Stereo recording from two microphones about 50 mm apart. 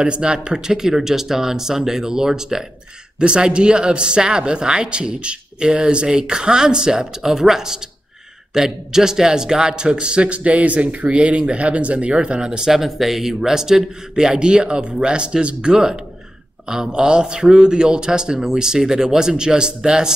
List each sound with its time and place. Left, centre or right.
0.0 s a man's voice: centre